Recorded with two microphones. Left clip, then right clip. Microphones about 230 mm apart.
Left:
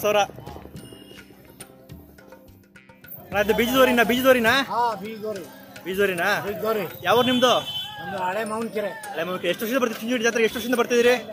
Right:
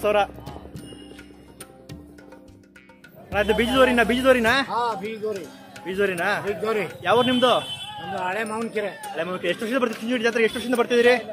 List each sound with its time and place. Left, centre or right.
0.0 s music: centre
3.3 s speech: centre
4.6 s speech: centre
5.3 s speech: centre
6.6 s speech: centre
7.0 s speech: centre
8.3 s speech: centre
9.0 s speech: centre